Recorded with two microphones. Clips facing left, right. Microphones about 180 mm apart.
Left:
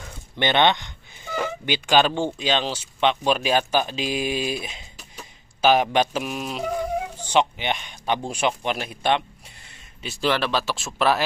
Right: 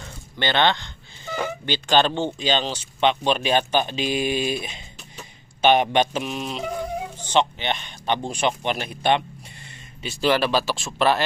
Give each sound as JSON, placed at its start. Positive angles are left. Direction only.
{"t": 0.4, "sound": "speech", "side_deg": 20}
{"t": 1.3, "sound": "speech", "side_deg": 5}